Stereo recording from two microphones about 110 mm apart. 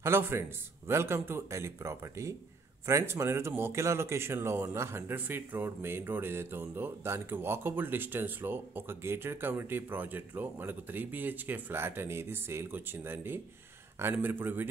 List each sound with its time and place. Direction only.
0.0 s speech: 20° right (ahead or behind)